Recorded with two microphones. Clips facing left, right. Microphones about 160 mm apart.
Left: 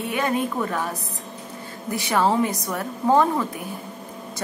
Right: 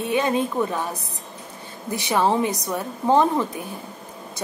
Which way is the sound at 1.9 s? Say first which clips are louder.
Even; 20° right (ahead or behind).